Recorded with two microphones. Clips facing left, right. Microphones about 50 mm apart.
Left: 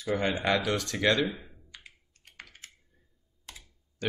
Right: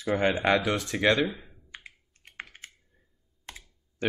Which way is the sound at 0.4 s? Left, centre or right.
Right.